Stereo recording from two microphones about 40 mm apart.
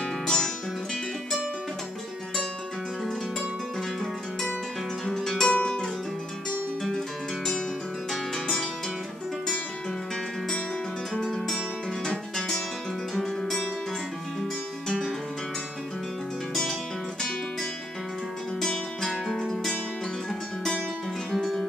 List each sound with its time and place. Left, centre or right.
0.0 s music: left
5.0 s music: centre
5.6 s music: left
11.1 s guitar: centre
13.2 s music: centre
14.9 s music: centre
18.6 s music: centre